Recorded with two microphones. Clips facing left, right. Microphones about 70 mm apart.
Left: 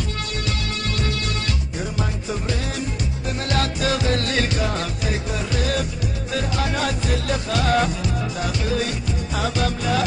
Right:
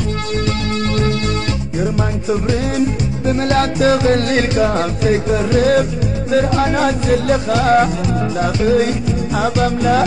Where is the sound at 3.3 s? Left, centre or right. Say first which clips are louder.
Right 9 dB; right.